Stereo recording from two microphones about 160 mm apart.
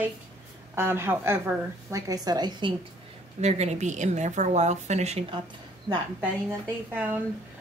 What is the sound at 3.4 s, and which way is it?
A woman's voice, 40° right (ahead or behind).